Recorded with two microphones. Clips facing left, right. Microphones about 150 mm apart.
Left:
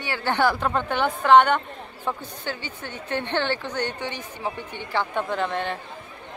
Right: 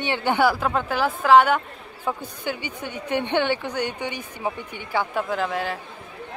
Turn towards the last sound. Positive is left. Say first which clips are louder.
# right 1 dB
turn(degrees=-5)  # may be behind; listen again after turning